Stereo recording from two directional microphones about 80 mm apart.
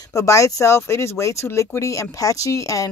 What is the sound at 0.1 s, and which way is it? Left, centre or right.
Speech, left.